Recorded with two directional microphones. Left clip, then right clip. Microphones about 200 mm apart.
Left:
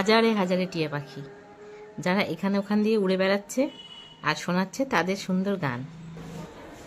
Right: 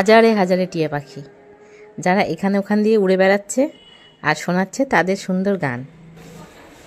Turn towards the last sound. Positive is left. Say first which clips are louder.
# right 8 dB
turn(degrees=-25)  # may be behind; listen again after turning